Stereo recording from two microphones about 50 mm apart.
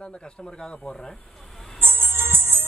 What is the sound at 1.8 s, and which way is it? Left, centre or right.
Music, right.